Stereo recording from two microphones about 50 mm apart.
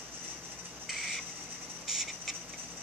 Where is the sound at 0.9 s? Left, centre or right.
Centre.